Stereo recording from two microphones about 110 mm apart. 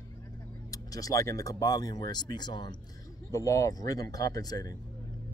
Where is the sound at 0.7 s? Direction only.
35° left (ahead or behind).